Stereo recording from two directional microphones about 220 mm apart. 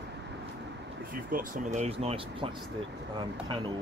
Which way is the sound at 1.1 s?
40° right (ahead or behind).